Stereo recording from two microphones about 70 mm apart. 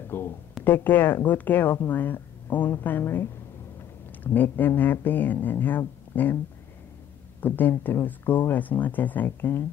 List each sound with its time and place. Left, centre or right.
0.1 s speech: left
7.4 s speech: left